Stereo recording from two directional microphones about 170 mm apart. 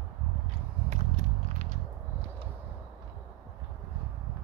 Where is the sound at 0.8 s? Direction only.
45° right (ahead or behind).